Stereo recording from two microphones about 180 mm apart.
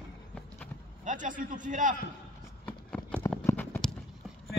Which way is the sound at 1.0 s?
45° right (ahead or behind).